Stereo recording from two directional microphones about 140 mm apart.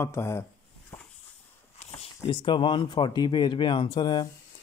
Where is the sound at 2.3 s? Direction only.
35° left (ahead or behind).